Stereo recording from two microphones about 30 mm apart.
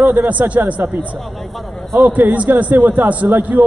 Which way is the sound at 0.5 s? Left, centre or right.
Right.